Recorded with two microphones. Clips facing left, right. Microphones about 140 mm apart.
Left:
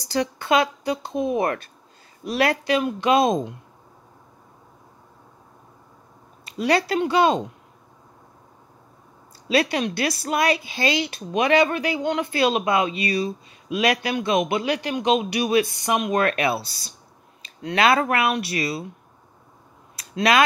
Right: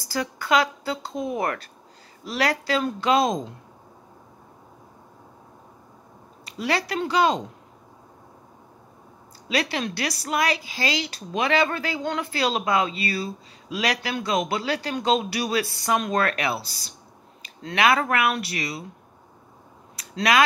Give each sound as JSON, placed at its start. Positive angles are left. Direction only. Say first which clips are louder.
{"t": 0.0, "sound": "speech", "louder": "left 4 dB", "side_deg": 25}
{"t": 6.4, "sound": "speech", "louder": "left 5 dB", "side_deg": 25}
{"t": 9.5, "sound": "speech", "louder": "left 5 dB", "side_deg": 25}
{"t": 20.0, "sound": "a sound", "louder": "left 2 dB", "side_deg": 25}